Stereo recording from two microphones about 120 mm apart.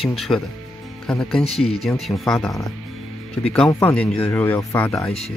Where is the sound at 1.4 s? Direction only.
55° left (ahead or behind).